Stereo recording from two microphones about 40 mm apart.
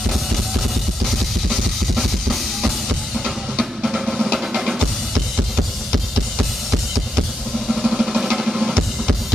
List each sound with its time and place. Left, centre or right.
1.5 s drum kit: centre
3.5 s music: centre
7.6 s drum: centre